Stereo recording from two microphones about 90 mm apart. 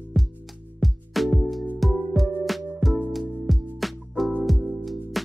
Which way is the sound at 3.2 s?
20° right (ahead or behind).